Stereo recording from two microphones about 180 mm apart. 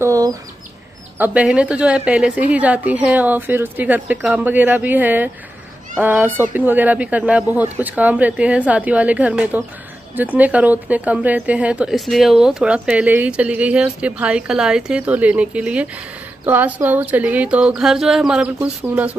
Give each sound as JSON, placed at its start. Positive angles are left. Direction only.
{"t": 0.0, "sound": "chicken", "side_deg": -20}
{"t": 1.1, "sound": "a woman's voice", "side_deg": -10}